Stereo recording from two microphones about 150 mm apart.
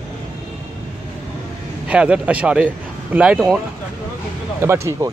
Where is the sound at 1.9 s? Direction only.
10° right (ahead or behind).